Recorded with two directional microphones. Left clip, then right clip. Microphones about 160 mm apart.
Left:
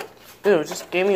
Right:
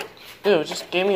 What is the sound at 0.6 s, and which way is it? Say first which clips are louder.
Speech: left 1 dB; 15° left (ahead or behind).